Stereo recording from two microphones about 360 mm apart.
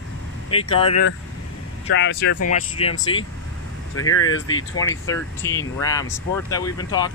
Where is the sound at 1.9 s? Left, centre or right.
Left.